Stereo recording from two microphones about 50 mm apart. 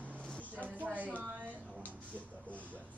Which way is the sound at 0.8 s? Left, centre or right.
Right.